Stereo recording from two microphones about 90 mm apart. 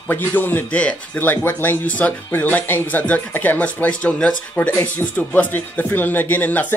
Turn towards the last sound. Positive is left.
turn(degrees=20)  # may be behind; listen again after turning